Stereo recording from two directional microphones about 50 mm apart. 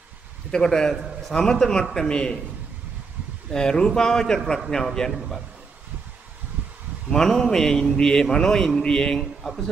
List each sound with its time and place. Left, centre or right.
0.5 s a man's voice: centre
3.5 s a man's voice: centre
7.1 s a man's voice: centre